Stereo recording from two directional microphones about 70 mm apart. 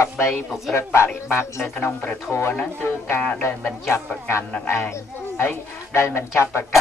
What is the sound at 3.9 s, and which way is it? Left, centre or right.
Speech, left.